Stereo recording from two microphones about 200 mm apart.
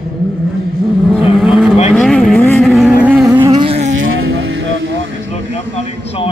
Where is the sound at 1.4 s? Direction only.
Centre (ahead or behind).